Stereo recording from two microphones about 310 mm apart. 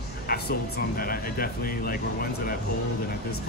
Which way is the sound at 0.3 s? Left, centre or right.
Left.